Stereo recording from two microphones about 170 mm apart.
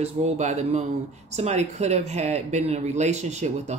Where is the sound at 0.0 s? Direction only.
40° right (ahead or behind).